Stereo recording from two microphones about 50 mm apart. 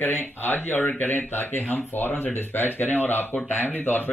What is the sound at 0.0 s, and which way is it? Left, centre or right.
Speech, left.